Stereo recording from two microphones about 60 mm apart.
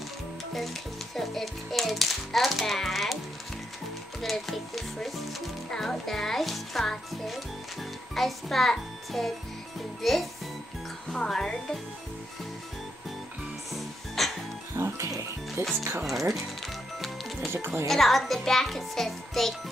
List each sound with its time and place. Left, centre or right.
1.1 s a child's voice: centre
4.2 s a child's voice: centre
13.7 s music: centre
14.8 s speech: right
16.0 s a child's voice: centre
17.0 s music: centre
17.5 s speech: right
17.8 s a child's voice: centre